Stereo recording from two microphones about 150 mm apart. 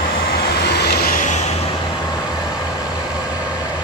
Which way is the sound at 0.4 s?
90° left.